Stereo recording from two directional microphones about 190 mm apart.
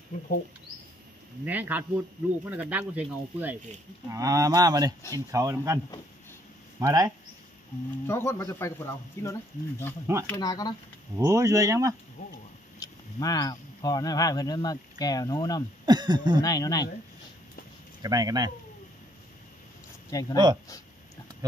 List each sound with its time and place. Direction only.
0.1 s speech: 40° left (ahead or behind)
1.4 s speech: 10° right (ahead or behind)
6.8 s speech: 20° right (ahead or behind)
8.1 s speech: 15° left (ahead or behind)
11.1 s speech: 15° right (ahead or behind)
12.7 s speech: 20° left (ahead or behind)
15.8 s speech: 20° right (ahead or behind)
16.4 s speech: 20° left (ahead or behind)
18.0 s speech: 20° right (ahead or behind)
20.1 s speech: 20° left (ahead or behind)